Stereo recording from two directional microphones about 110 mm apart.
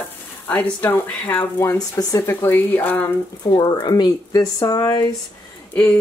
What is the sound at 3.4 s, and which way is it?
Speech, 35° left (ahead or behind).